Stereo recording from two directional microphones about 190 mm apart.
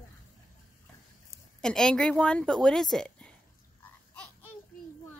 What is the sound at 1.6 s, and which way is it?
A woman's voice, 5° left (ahead or behind).